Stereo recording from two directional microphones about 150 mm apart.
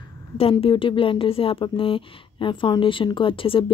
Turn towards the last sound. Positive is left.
turn(degrees=35)  # may be behind; listen again after turning